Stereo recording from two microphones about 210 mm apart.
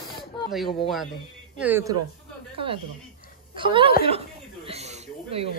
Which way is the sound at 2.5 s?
25° right (ahead or behind).